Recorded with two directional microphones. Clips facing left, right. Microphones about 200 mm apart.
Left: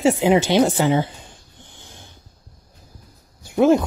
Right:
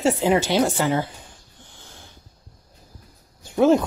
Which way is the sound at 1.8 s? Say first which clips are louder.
Left 1 dB; 20° left (ahead or behind).